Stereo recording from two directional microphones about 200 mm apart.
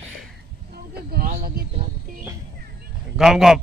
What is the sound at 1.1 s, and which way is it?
Speech, 50° right (ahead or behind).